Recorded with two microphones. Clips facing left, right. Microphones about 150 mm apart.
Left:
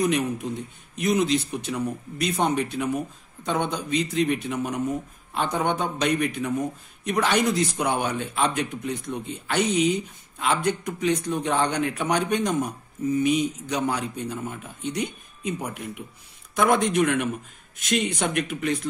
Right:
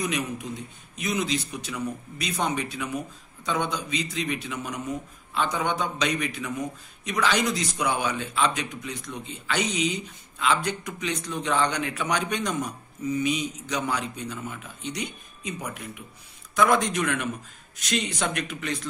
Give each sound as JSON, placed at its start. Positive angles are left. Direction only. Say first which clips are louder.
{"t": 0.0, "sound": "speech", "louder": "left 6 dB", "side_deg": 55}